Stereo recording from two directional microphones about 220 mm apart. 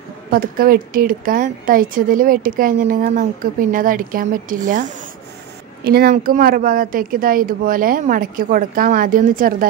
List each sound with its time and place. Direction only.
0.3 s speech: 40° right (ahead or behind)